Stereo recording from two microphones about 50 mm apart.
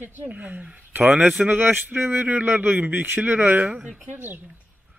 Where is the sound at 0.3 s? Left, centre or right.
Right.